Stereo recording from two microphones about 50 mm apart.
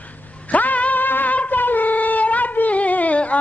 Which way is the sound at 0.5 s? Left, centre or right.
Left.